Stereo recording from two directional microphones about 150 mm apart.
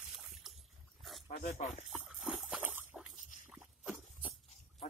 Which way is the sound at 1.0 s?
Centre (ahead or behind).